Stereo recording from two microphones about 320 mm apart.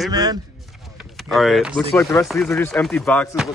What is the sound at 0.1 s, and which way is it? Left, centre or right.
Speech, centre.